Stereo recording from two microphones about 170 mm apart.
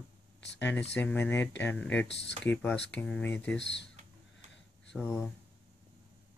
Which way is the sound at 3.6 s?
90° left.